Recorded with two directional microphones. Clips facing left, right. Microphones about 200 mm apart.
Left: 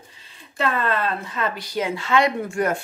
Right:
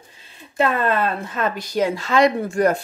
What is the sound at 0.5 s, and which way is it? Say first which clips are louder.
Speech: right 4 dB; 50° right (ahead or behind).